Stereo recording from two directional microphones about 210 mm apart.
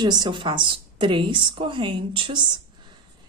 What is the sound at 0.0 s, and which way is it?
Speech, 20° right (ahead or behind).